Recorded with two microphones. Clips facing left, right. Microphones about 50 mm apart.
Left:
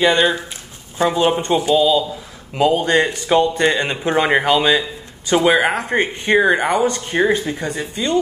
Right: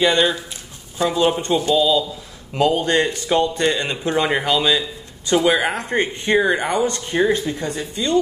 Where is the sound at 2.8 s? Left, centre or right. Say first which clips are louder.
Left 2 dB; left.